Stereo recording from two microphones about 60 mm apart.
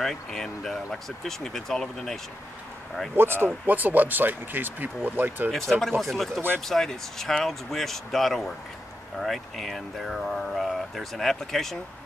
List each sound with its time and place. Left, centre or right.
0.0 s speech: centre
3.2 s speech: right
5.5 s speech: centre